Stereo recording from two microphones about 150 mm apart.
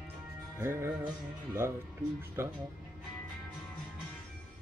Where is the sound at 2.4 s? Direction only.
15° right (ahead or behind).